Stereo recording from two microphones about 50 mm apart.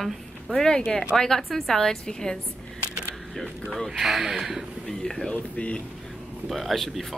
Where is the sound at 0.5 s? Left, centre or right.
Centre.